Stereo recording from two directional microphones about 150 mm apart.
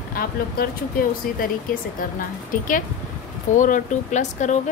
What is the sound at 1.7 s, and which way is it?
A woman's voice, 70° left (ahead or behind).